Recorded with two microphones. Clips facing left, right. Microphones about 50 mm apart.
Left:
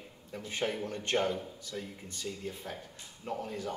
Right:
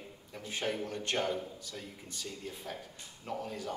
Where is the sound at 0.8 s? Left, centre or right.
Left.